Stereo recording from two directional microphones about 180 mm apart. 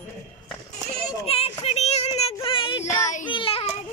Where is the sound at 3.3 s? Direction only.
30° left (ahead or behind).